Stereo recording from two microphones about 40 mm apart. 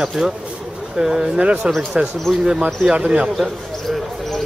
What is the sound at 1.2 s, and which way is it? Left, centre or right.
Speech, right.